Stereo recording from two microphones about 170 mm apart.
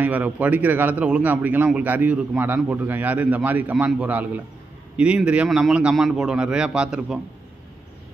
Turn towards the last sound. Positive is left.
turn(degrees=-5)  # may be behind; listen again after turning